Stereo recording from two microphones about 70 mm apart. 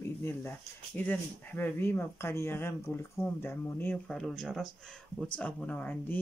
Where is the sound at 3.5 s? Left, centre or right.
Left.